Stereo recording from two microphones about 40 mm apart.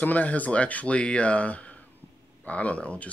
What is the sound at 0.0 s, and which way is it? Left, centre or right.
Speech, left.